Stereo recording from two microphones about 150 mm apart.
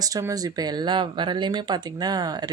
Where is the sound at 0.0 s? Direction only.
25° right (ahead or behind).